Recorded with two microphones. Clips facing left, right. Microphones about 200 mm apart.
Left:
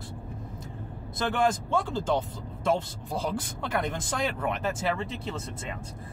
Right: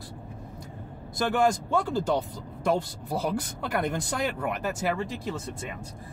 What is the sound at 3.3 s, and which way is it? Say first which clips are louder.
Speech: right 1 dB; 20° left (ahead or behind).